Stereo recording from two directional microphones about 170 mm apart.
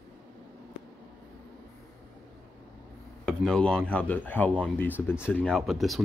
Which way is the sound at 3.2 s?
5° left (ahead or behind).